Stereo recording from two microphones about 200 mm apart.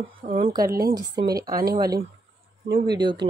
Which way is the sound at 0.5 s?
15° right (ahead or behind).